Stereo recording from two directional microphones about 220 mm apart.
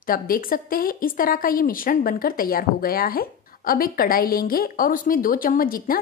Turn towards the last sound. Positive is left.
turn(degrees=40)  # may be behind; listen again after turning